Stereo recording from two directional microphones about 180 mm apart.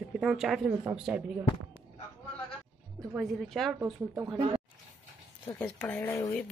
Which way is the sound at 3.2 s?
Centre (ahead or behind).